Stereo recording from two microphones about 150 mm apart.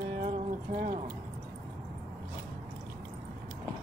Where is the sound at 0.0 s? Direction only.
80° right; by 1.1 s 65° right (ahead or behind).